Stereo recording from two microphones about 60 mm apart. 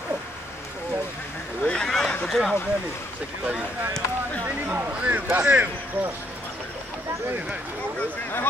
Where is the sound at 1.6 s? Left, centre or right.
Centre.